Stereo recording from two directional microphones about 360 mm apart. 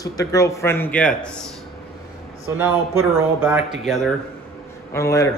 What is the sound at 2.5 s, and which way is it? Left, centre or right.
A man's voice, centre.